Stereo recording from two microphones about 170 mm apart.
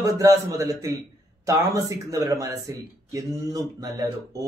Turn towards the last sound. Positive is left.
turn(degrees=-20)  # may be behind; listen again after turning